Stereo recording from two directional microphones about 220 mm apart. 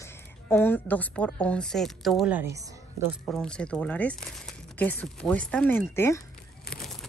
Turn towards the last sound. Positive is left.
turn(degrees=10)  # may be behind; listen again after turning